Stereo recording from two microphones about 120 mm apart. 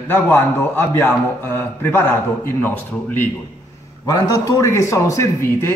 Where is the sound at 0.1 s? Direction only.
15° left (ahead or behind).